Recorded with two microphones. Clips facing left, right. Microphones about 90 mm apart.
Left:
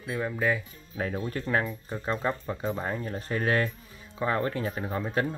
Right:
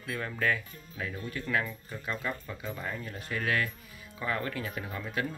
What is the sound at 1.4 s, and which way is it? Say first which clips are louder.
Speech: left 1 dB; 30° left (ahead or behind).